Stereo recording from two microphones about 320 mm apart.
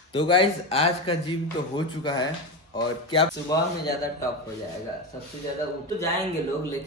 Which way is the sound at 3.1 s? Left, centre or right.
Centre.